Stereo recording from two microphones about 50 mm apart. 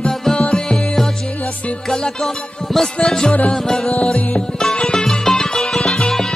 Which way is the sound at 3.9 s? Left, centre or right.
Left.